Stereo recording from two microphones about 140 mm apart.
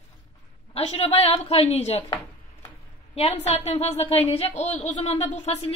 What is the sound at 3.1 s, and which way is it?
A woman's voice, 50° left (ahead or behind).